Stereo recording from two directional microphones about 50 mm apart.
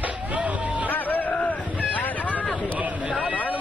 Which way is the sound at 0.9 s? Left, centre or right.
Left.